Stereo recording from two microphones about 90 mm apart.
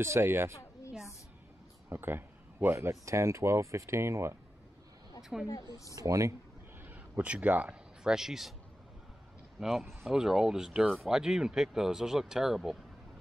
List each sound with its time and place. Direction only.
0.0 s speech: 30° right (ahead or behind)
1.9 s a man's voice: 25° right (ahead or behind)
2.9 s speech: 35° right (ahead or behind)
5.3 s speech: 5° right (ahead or behind)
5.9 s speech: 35° right (ahead or behind)
6.8 s speech: 15° right (ahead or behind)
9.6 s speech: centre (ahead or behind)